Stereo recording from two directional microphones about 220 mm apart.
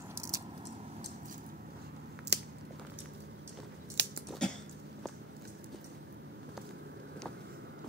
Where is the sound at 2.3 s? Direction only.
50° right (ahead or behind).